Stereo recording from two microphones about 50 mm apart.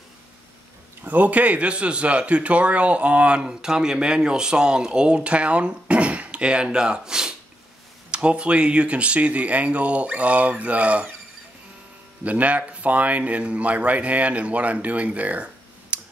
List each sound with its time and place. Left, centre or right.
1.0 s speech: right
12.3 s speech: right